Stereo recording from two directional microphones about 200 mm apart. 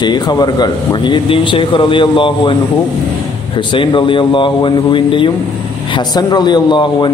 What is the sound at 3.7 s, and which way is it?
A man's voice, 25° left (ahead or behind).